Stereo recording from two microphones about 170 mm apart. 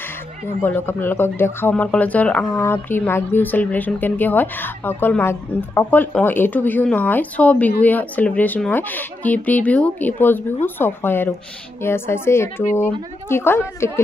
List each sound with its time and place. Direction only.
0.6 s speech: 10° left (ahead or behind)